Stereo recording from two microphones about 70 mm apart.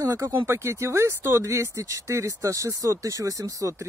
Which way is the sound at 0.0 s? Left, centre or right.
Right.